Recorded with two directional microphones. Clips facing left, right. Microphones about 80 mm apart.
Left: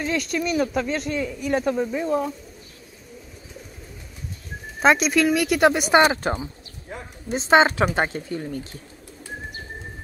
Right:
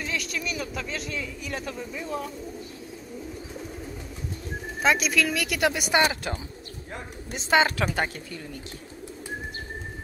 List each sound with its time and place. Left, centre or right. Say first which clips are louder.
0.0 s speech: left 7 dB; left
4.8 s speech: left 6 dB; left